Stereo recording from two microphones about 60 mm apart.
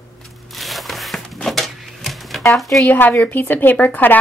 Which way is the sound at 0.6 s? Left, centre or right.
Centre.